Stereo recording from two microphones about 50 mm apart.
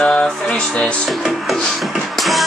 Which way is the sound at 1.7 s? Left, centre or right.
Centre.